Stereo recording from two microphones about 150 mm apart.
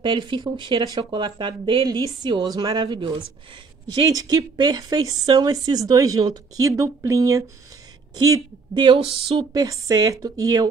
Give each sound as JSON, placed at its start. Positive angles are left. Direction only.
{"t": 0.0, "sound": "speech", "side_deg": -30}
{"t": 9.5, "sound": "speech", "side_deg": -25}